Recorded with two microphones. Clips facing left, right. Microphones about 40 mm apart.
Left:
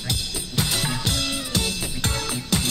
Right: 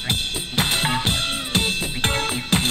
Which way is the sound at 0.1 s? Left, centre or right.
Right.